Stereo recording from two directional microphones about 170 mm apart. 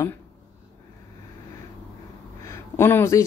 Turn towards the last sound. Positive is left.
turn(degrees=15)  # may be behind; listen again after turning